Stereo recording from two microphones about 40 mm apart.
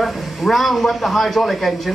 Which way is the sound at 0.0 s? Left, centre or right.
Centre.